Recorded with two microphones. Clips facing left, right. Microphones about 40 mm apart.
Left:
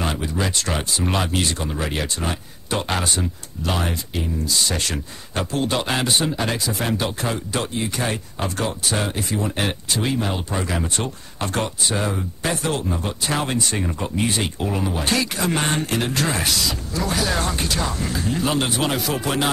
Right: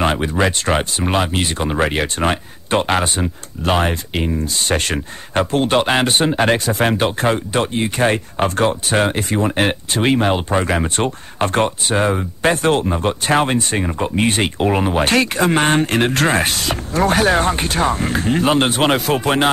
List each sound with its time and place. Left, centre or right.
0.0 s speech: right
1.0 s speech: right
1.7 s speech: right
14.1 s speech: right